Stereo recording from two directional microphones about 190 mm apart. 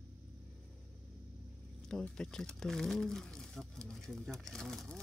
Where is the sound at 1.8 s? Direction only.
5° left (ahead or behind).